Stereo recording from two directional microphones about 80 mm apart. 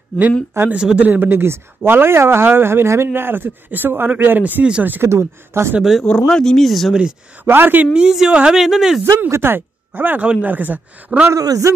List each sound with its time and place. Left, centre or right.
0.7 s speech: centre
5.1 s speech: right
5.8 s speech: centre
6.0 s speech: centre
7.4 s speech: right
7.9 s speech: centre
9.3 s speech: right
11.3 s a man's voice: right